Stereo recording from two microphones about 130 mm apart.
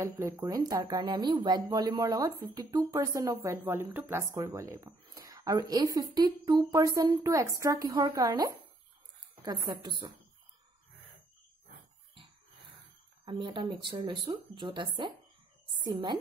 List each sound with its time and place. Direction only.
0.0 s speech: 25° right (ahead or behind)
13.2 s speech: 40° right (ahead or behind)